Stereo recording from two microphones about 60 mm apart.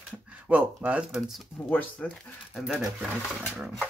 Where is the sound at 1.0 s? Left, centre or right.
Centre.